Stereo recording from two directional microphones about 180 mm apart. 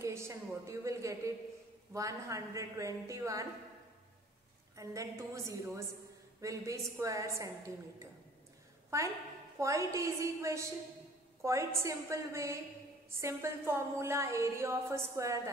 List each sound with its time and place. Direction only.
0.0 s a woman's voice: 15° right (ahead or behind)
4.7 s a woman's voice: 15° right (ahead or behind)
8.9 s a woman's voice: 15° right (ahead or behind)